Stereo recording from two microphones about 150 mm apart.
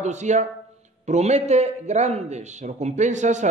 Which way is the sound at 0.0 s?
50° right (ahead or behind).